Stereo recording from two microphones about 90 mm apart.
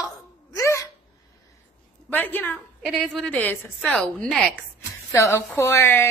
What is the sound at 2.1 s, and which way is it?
A woman's voice, 20° left (ahead or behind).